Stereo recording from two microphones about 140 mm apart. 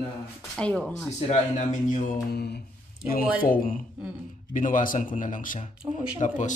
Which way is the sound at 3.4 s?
85° left.